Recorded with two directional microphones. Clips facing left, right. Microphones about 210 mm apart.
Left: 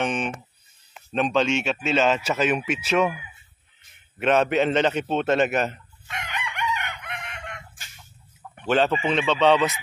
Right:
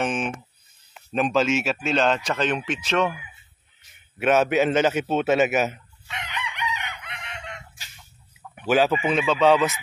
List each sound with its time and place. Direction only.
0.0 s speech: centre (ahead or behind)
4.2 s speech: 5° right (ahead or behind)
6.0 s chicken: 50° left (ahead or behind)
8.5 s speech: 5° right (ahead or behind)